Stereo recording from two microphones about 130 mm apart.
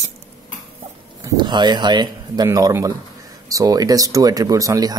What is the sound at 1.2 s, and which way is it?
Speech, 35° right (ahead or behind).